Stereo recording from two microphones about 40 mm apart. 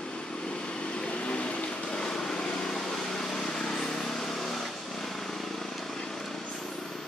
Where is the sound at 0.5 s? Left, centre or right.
Left; by 5.7 s centre.